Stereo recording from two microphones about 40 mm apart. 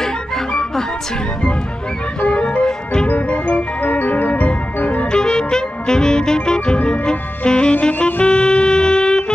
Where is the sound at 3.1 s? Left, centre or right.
Left.